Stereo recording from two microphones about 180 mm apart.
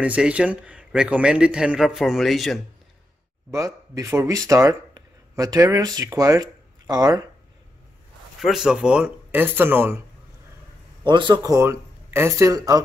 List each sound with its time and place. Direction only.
0.0 s a man's voice: 5° right (ahead or behind)
3.5 s speech: 15° right (ahead or behind)
8.4 s speech: centre (ahead or behind)
11.1 s speech: 25° right (ahead or behind)